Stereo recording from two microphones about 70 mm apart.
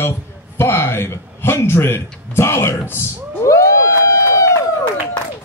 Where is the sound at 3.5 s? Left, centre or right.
Left.